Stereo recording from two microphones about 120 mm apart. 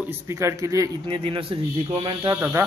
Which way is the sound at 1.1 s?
45° right (ahead or behind).